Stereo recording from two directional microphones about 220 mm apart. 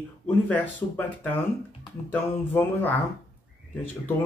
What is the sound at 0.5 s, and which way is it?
A woman's voice, 5° left (ahead or behind).